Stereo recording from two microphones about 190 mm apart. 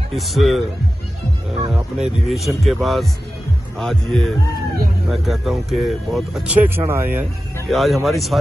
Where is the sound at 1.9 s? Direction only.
Centre (ahead or behind).